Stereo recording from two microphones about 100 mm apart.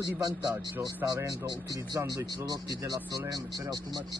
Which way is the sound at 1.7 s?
40° right (ahead or behind).